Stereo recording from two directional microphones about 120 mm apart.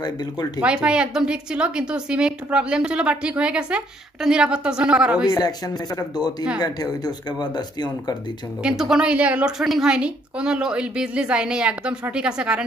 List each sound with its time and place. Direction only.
0.0 s speech: 35° left (ahead or behind)
0.6 s a woman's voice: 10° right (ahead or behind)
5.3 s speech: 30° left (ahead or behind)
8.6 s a woman's voice: 5° right (ahead or behind)